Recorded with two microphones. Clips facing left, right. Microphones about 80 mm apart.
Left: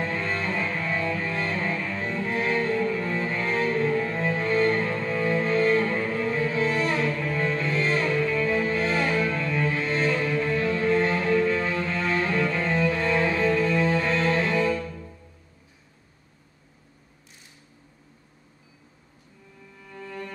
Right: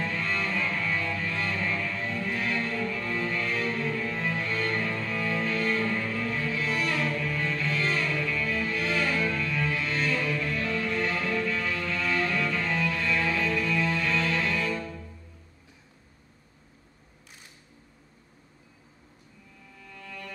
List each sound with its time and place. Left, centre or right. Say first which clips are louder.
0.0 s music: left 2 dB; left
19.8 s music: left 6 dB; left